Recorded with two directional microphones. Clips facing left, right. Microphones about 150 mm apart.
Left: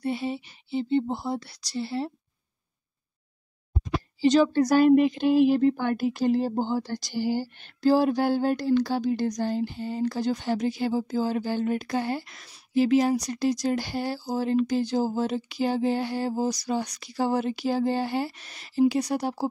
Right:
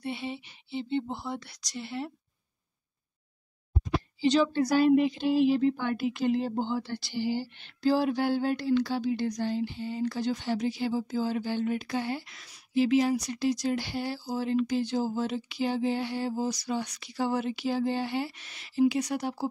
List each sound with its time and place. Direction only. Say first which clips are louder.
0.0 s speech: left 6 dB; 40° left (ahead or behind)
4.2 s speech: left 5 dB; 45° left (ahead or behind)